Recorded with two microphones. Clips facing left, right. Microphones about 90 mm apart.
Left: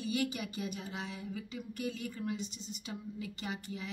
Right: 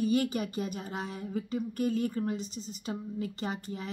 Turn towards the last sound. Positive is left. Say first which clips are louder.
# right 6 dB
turn(degrees=-40)  # may be behind; listen again after turning